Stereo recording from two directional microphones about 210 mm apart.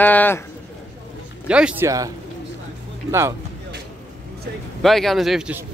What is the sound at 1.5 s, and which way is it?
Speech, 5° right (ahead or behind).